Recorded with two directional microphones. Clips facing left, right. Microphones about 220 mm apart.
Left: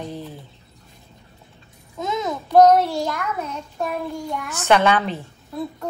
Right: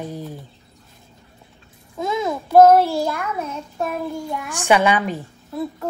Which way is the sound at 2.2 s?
5° right (ahead or behind).